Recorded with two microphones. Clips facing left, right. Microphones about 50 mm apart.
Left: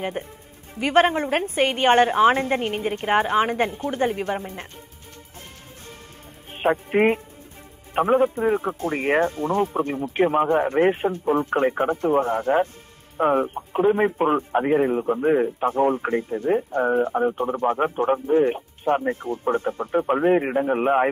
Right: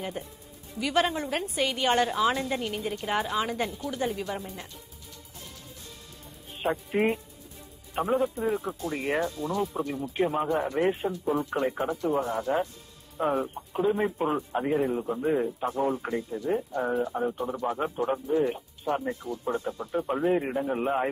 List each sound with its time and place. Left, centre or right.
0.2 s a woman's voice: left
6.5 s speech: left